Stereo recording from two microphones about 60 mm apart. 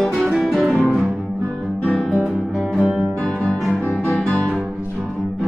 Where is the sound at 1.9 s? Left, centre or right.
Centre.